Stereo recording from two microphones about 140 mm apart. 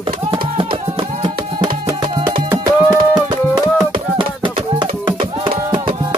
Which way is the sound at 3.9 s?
35° right (ahead or behind).